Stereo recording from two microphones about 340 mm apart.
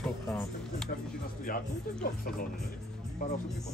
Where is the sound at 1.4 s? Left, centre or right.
Left.